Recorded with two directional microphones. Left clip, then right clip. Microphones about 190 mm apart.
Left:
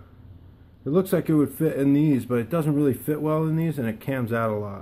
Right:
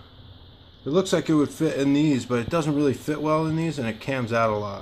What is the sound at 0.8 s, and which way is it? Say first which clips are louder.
Speech: right 1 dB; 15° left (ahead or behind).